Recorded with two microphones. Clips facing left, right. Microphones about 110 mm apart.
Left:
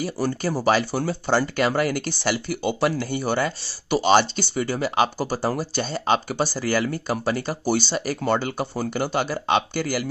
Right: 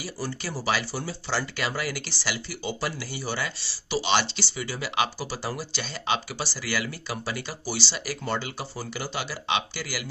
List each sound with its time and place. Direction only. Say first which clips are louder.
0.0 s speech: left 9 dB; 50° left (ahead or behind)